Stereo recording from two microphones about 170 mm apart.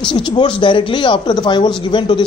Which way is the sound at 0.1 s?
30° left (ahead or behind).